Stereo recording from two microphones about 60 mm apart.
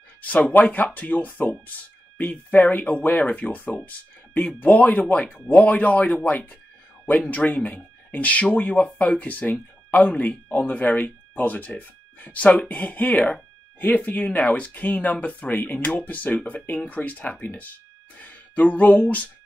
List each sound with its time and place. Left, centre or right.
0.2 s speech: left